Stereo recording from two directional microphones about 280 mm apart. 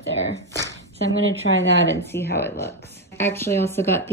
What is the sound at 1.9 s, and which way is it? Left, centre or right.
A woman's voice, centre.